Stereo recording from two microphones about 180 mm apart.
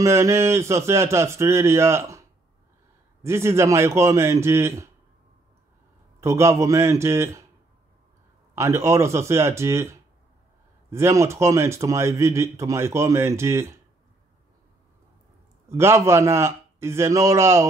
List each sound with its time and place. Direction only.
0.0 s speech: 15° right (ahead or behind)
3.3 s speech: 15° right (ahead or behind)
6.2 s speech: 15° right (ahead or behind)
8.5 s speech: 15° right (ahead or behind)
15.7 s speech: 15° right (ahead or behind)